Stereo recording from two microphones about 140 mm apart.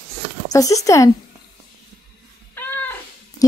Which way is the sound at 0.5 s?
25° left (ahead or behind).